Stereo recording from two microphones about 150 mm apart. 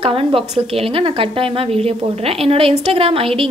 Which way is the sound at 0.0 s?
40° right (ahead or behind).